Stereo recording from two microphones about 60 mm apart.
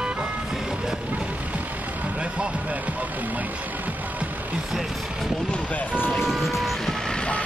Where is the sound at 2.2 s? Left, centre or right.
Centre.